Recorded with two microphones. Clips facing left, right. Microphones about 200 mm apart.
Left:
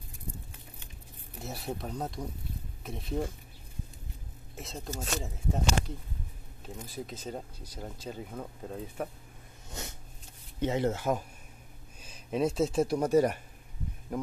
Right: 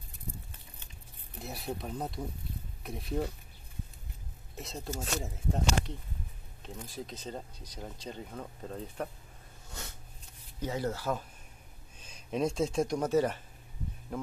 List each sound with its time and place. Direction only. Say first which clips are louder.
1.8 s speech: left 1 dB; centre (ahead or behind)
4.6 s speech: even; centre (ahead or behind)
9.7 s a sound: left 4 dB; 20° left (ahead or behind)
10.6 s speech: left 5 dB; 25° left (ahead or behind)
12.0 s speech: left 2 dB; 5° left (ahead or behind)